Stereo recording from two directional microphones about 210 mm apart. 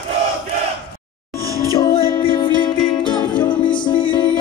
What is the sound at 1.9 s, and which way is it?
Music, 25° left (ahead or behind).